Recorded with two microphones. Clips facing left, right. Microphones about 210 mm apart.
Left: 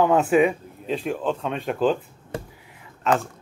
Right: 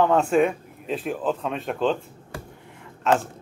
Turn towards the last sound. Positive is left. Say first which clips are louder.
# right 1 dB
turn(degrees=0)  # may be behind; listen again after turning